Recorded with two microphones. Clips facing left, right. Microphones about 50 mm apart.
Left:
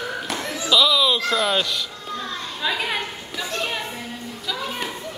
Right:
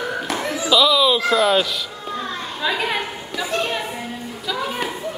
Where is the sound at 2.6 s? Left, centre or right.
Centre.